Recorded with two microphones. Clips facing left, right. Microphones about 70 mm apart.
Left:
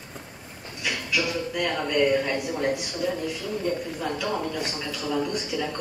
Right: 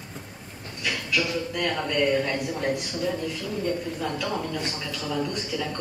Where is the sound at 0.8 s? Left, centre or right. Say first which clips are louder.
Even; centre.